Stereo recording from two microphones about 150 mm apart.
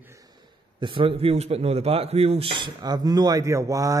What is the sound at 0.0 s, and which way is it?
A man's voice, 20° right (ahead or behind).